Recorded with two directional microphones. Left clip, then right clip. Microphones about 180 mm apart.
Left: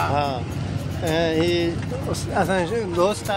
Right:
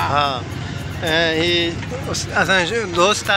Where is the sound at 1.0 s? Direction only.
15° left (ahead or behind).